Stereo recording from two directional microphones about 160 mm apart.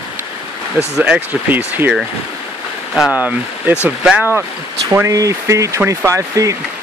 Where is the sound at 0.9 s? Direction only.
10° right (ahead or behind).